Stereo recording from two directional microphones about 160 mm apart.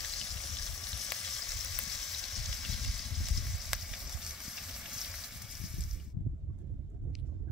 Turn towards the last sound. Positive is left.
turn(degrees=-5)  # may be behind; listen again after turning